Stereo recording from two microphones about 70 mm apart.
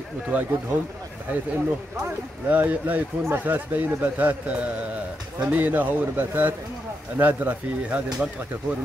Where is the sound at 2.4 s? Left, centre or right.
Right.